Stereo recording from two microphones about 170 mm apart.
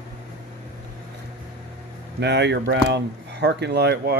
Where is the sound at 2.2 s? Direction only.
90° right.